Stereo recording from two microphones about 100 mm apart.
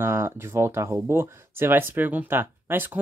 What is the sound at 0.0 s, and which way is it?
Speech, 25° right (ahead or behind).